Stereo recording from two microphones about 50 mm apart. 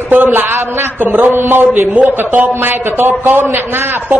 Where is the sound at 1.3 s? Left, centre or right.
Right.